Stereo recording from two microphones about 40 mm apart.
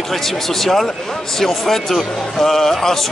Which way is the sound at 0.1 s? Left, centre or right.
Centre.